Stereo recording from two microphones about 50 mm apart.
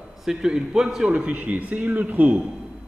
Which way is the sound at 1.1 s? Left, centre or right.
Right.